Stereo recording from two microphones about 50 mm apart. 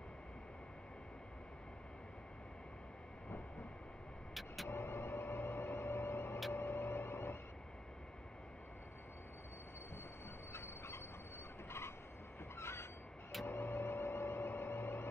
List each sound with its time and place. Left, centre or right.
4.3 s vehicle: centre
4.6 s a sound: left
6.5 s vehicle: left
10.5 s fowl: left
12.5 s train: left
13.5 s a sound: left